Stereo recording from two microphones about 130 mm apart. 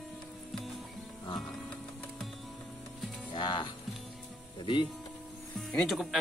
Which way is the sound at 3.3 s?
35° left (ahead or behind).